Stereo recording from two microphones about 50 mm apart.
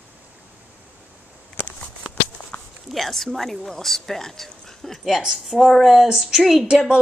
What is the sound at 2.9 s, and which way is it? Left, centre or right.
A woman's voice, centre.